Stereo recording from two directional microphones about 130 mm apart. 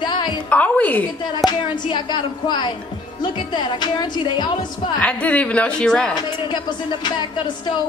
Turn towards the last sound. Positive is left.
turn(degrees=35)  # may be behind; listen again after turning